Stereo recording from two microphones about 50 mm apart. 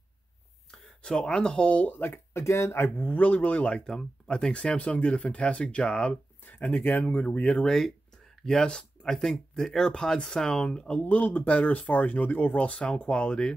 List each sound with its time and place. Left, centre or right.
0.7 s speech: centre
1.8 s speech: left
2.3 s speech: left
2.8 s speech: left
6.4 s speech: left
7.4 s speech: centre
11.0 s speech: left